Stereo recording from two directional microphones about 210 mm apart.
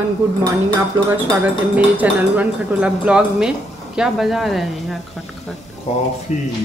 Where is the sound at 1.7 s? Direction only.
5° right (ahead or behind).